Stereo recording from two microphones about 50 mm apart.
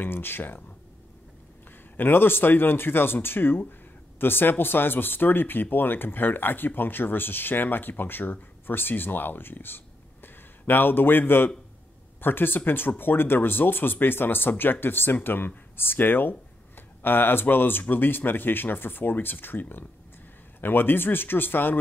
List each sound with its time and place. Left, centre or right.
0.0 s speech: left
2.0 s speech: left
20.6 s speech: left